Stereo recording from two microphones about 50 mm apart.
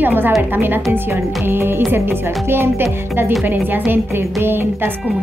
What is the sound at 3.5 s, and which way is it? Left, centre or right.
Speech, right.